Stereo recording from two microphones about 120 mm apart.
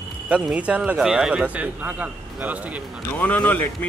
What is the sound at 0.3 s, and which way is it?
Speech, 10° right (ahead or behind).